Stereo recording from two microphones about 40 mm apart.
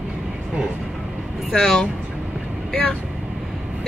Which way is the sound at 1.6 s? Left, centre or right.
Centre.